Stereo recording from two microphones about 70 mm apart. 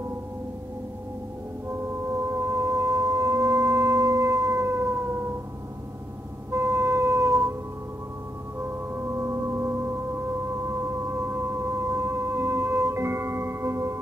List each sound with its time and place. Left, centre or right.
1.7 s music: right
6.5 s wind instrument: right
8.5 s music: right